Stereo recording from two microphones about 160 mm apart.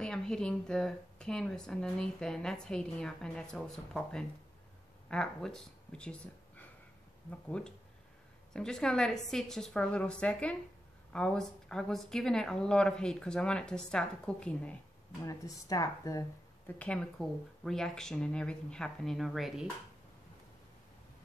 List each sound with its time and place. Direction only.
0.0 s speech: 5° left (ahead or behind)
15.2 s speech: 20° left (ahead or behind)
16.7 s speech: 5° left (ahead or behind)